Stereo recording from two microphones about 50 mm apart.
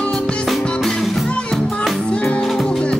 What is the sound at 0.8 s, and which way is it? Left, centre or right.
Music, centre.